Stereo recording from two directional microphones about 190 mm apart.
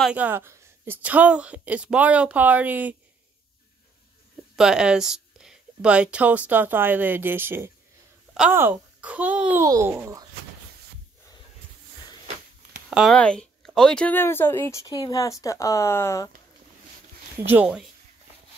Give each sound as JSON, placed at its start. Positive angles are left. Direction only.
{"t": 0.0, "sound": "speech", "side_deg": -5}
{"t": 4.6, "sound": "speech", "side_deg": -5}
{"t": 12.9, "sound": "speech", "side_deg": 0}
{"t": 17.5, "sound": "speech", "side_deg": -5}